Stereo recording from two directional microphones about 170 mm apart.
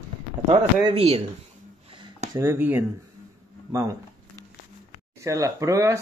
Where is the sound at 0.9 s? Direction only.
35° right (ahead or behind).